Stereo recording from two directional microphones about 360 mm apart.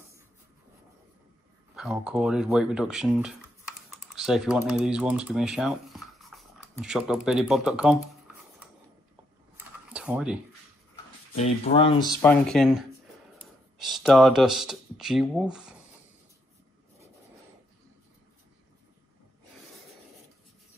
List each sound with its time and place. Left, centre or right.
1.8 s speech: centre
9.9 s speech: centre
11.3 s speech: centre
12.2 s speech: centre